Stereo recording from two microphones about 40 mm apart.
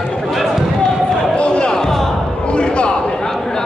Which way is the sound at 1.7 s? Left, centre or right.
Centre.